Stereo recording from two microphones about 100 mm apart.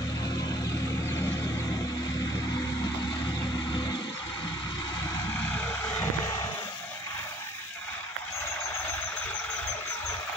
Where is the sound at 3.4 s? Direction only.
45° left (ahead or behind).